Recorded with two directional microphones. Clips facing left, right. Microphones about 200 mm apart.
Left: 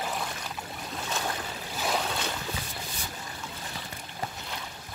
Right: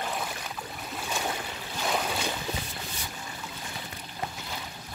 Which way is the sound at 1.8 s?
Centre (ahead or behind).